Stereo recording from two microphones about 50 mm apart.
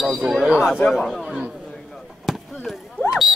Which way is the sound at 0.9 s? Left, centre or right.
Centre.